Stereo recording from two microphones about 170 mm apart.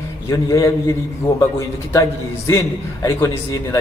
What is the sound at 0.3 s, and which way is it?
Speech, 20° left (ahead or behind).